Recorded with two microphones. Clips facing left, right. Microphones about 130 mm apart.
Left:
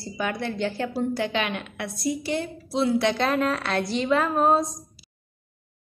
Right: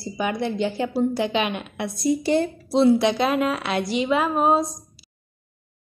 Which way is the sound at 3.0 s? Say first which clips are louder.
Right 2 dB; 15° right (ahead or behind).